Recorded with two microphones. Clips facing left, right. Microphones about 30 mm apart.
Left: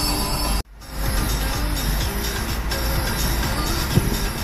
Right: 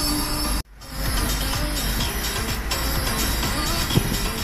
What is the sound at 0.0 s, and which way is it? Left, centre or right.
Music, left.